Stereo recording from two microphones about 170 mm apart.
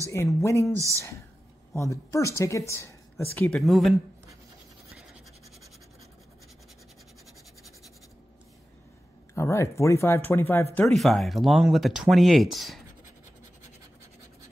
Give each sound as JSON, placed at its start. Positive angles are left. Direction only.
{"t": 0.4, "sound": "speech", "side_deg": 15}
{"t": 0.7, "sound": "speech", "side_deg": -20}
{"t": 1.8, "sound": "speech", "side_deg": 15}
{"t": 3.3, "sound": "speech", "side_deg": 5}
{"t": 9.3, "sound": "speech", "side_deg": 15}